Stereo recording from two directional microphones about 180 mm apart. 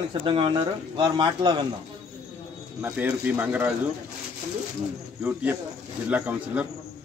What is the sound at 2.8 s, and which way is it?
Speech, 10° right (ahead or behind).